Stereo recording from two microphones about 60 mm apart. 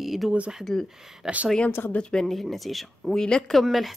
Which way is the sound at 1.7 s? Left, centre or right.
Left.